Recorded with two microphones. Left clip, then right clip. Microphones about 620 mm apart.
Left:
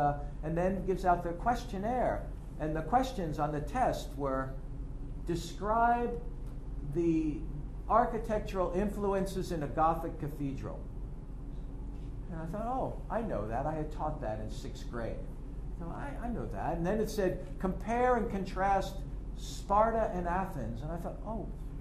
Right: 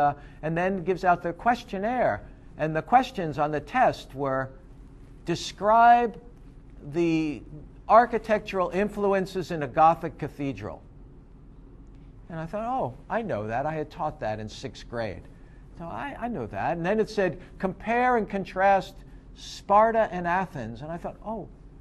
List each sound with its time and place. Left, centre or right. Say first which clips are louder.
0.0 s a man's voice: right 7 dB; right
7.9 s a man's voice: right 9 dB; right
12.4 s a man's voice: right 7 dB; right